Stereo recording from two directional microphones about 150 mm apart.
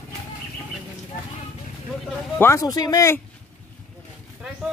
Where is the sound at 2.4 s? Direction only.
20° left (ahead or behind).